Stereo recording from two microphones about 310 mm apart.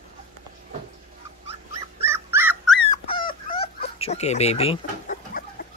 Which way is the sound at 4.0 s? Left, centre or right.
Left.